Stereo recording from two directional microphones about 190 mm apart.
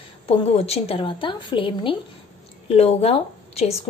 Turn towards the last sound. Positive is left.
turn(degrees=35)  # may be behind; listen again after turning